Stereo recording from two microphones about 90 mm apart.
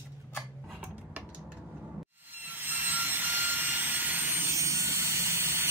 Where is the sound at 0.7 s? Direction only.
15° right (ahead or behind).